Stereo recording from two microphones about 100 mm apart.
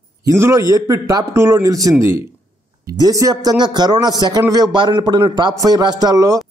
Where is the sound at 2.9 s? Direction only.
40° right (ahead or behind).